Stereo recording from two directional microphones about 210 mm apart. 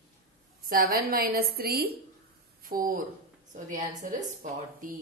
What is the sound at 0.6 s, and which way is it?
A woman's voice, 45° right (ahead or behind).